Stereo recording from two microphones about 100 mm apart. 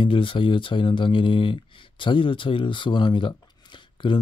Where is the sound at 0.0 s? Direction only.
60° left (ahead or behind).